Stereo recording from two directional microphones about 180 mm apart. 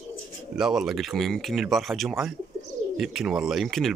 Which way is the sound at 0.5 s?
Centre (ahead or behind).